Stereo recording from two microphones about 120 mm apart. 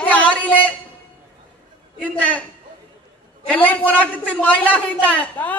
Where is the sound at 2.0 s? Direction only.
15° left (ahead or behind).